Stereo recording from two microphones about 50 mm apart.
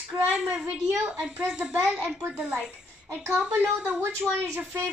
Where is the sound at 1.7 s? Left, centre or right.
Right.